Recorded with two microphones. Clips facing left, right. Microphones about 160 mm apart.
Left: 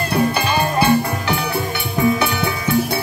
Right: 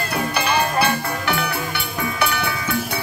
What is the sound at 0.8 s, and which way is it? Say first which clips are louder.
Music: left 5 dB; 20° left (ahead or behind).